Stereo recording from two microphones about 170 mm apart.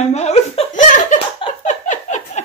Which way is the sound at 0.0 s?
40° left (ahead or behind).